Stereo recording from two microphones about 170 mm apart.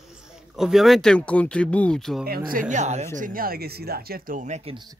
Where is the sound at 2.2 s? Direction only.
60° right (ahead or behind); by 3.0 s 45° right (ahead or behind).